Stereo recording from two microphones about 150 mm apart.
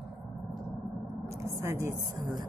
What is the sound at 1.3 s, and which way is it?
Speech, 20° right (ahead or behind).